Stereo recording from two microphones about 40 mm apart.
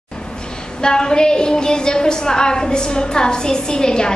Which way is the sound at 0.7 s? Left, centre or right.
Centre.